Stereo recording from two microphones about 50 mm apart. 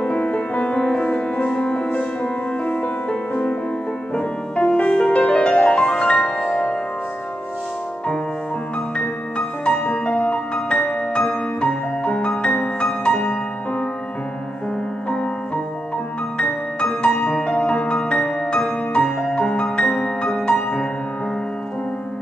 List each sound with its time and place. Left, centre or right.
0.0 s music: left
9.7 s music: left
15.0 s music: left